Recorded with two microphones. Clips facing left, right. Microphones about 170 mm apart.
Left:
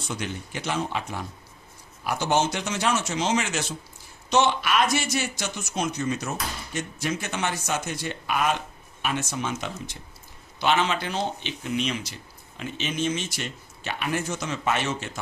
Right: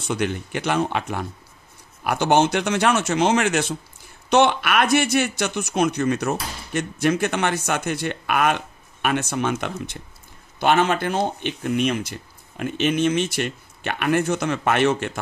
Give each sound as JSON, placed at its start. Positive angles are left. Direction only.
{"t": 0.1, "sound": "speech", "side_deg": -65}